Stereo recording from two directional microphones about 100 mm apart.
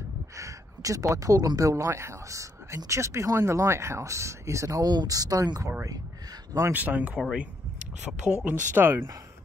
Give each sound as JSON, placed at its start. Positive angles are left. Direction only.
{"t": 0.4, "sound": "speech", "side_deg": -35}
{"t": 4.8, "sound": "speech", "side_deg": -40}
{"t": 5.7, "sound": "speech", "side_deg": -25}